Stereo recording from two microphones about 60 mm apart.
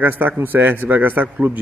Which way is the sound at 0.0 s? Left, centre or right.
Right.